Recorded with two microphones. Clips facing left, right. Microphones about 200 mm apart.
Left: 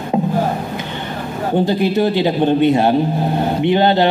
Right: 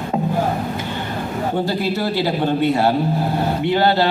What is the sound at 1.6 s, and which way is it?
A man's voice, 20° left (ahead or behind).